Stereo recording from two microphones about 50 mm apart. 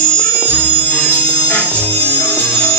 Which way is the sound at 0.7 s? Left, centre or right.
Left.